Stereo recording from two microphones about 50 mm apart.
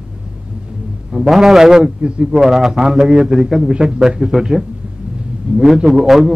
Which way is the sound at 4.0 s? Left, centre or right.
Centre.